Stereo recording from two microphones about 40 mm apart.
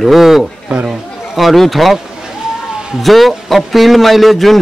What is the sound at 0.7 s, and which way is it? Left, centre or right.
Chatter, right.